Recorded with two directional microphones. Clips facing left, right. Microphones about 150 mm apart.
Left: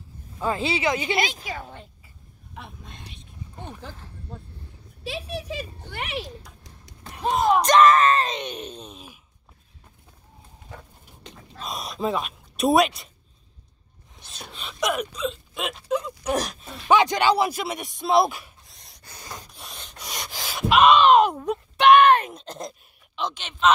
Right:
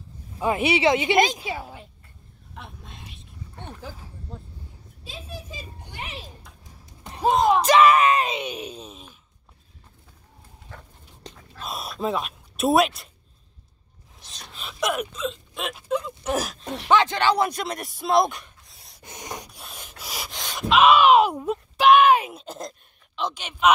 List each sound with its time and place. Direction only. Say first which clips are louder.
0.4 s speech: right 4 dB; 20° right (ahead or behind)
1.1 s a woman's voice: right 6 dB; 40° right (ahead or behind)
1.5 s speech: right 2 dB; 5° right (ahead or behind)
2.5 s a sound: left 1 dB; centre (ahead or behind)
3.8 s speech: right 1 dB; 10° right (ahead or behind)
5.0 s a sound: left 7 dB; 75° left (ahead or behind)
7.0 s basketball bounce: right 3 dB; 25° right (ahead or behind)
7.2 s speech: right 2 dB; centre (ahead or behind)
11.6 s speech: even; 5° right (ahead or behind)
14.1 s a sound: left 3 dB; centre (ahead or behind)
16.3 s speech: left 1 dB; 5° right (ahead or behind)
16.8 s speech: left 1 dB; 15° left (ahead or behind); by 19.0 s centre (ahead or behind)
19.0 s sanding: right 4 dB; 20° right (ahead or behind)
19.5 s gasp: even; 10° right (ahead or behind)